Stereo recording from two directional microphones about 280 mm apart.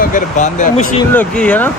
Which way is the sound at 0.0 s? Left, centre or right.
Left.